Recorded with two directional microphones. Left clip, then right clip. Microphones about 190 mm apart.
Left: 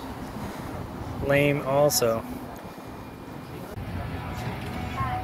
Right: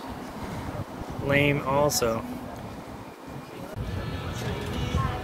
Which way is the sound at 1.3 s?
5° left (ahead or behind).